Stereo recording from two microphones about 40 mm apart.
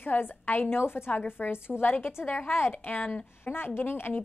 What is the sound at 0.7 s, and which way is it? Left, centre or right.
Speech, left.